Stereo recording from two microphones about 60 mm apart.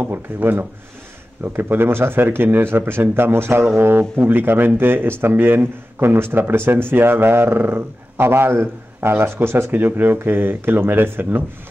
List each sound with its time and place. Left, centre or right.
0.0 s speech: right
9.8 s speech: right